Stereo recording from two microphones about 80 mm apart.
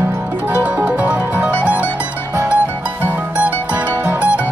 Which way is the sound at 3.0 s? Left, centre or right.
Right.